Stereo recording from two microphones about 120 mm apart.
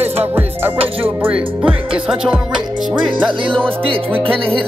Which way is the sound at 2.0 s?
5° right (ahead or behind).